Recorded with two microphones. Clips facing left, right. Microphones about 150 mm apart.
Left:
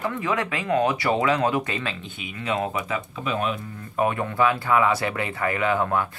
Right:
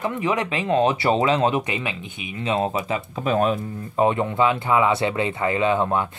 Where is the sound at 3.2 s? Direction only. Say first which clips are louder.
Right 6 dB; 40° right (ahead or behind).